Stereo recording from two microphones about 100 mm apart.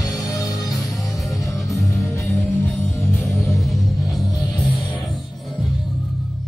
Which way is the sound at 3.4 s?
Centre (ahead or behind).